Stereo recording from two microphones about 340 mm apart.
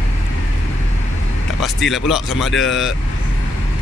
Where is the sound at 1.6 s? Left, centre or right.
Centre.